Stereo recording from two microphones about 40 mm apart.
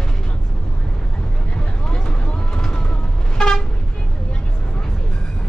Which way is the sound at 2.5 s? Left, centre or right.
Left.